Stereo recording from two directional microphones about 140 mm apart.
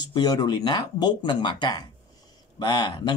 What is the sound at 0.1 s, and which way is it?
Speech, 30° left (ahead or behind).